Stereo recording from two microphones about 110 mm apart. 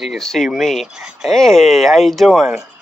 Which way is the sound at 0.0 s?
Centre (ahead or behind).